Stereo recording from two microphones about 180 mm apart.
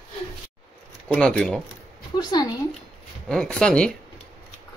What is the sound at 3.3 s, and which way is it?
Speech, 5° left (ahead or behind).